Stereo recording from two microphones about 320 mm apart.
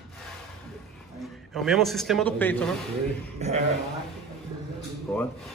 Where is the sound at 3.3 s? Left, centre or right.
Right.